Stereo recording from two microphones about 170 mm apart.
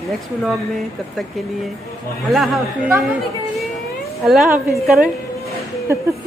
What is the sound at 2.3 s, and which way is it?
Speech, centre (ahead or behind).